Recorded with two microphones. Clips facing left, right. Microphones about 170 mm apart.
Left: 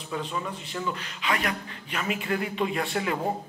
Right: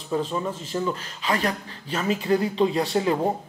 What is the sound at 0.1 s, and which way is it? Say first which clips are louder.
A man's voice: right 6 dB; 35° right (ahead or behind).